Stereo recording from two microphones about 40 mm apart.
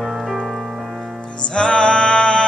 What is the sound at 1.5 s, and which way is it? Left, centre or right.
Music, left.